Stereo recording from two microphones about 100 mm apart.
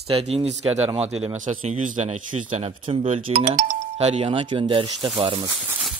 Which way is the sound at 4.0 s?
90° right.